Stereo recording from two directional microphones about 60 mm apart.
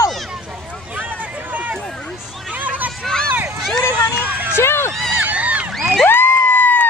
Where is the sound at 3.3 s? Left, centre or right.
Right.